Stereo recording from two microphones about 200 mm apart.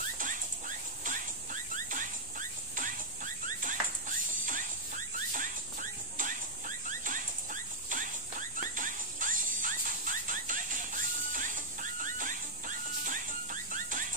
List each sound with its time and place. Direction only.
0.0 s rodents: 40° right (ahead or behind)